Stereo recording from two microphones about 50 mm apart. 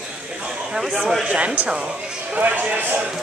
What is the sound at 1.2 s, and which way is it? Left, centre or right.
A man's voice, right.